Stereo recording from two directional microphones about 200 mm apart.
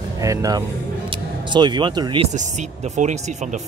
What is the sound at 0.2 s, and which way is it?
Speech, 15° right (ahead or behind).